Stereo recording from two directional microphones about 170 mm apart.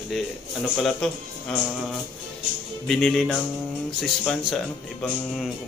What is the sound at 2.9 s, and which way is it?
Speech, centre (ahead or behind).